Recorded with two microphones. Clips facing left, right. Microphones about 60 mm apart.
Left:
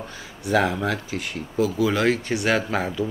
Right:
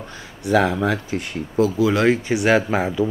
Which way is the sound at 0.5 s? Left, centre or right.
Centre.